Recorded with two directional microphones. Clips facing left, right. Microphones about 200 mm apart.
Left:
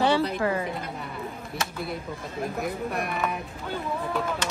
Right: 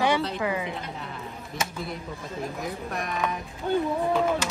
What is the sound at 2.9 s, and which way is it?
Speech, 5° left (ahead or behind).